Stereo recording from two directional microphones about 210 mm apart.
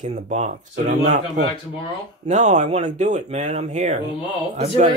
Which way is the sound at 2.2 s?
35° right (ahead or behind).